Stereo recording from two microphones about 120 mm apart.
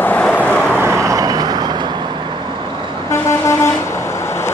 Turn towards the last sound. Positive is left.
turn(degrees=20)  # may be behind; listen again after turning